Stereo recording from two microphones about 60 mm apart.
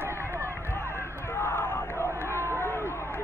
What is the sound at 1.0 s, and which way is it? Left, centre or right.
Crowd, left.